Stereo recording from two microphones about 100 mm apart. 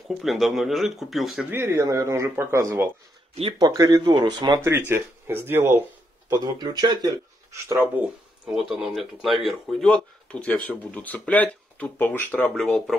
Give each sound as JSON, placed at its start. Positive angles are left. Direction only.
{"t": 0.1, "sound": "speech", "side_deg": 0}
{"t": 1.4, "sound": "speech", "side_deg": -20}
{"t": 3.5, "sound": "speech", "side_deg": -40}
{"t": 4.1, "sound": "speech", "side_deg": -50}
{"t": 4.6, "sound": "speech", "side_deg": -25}
{"t": 6.3, "sound": "speech", "side_deg": -45}
{"t": 7.5, "sound": "speech", "side_deg": -30}
{"t": 8.6, "sound": "speech", "side_deg": 0}
{"t": 9.8, "sound": "speech", "side_deg": 10}
{"t": 12.5, "sound": "speech", "side_deg": 0}